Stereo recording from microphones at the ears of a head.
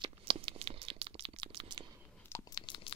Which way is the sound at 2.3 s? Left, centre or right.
Left.